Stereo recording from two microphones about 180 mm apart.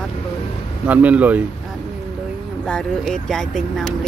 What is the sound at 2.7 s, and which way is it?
Speech, 5° left (ahead or behind).